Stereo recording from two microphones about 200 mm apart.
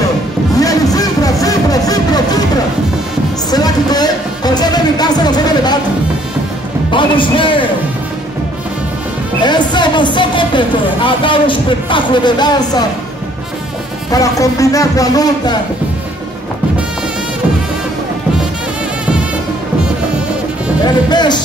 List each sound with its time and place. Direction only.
0.6 s a sound: 15° left (ahead or behind)
3.4 s music: 20° left (ahead or behind)
6.9 s music: 25° left (ahead or behind)
9.4 s a woman's voice: 20° left (ahead or behind)
14.1 s speech: 15° left (ahead or behind)
20.8 s speech: 20° left (ahead or behind)